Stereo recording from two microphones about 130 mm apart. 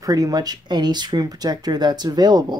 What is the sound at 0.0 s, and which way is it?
Speech, 30° right (ahead or behind).